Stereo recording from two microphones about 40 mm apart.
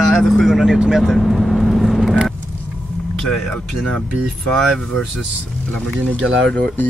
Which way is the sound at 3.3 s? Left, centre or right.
Centre.